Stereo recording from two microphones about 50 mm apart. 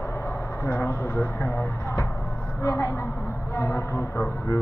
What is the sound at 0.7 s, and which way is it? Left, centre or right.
Speech, left.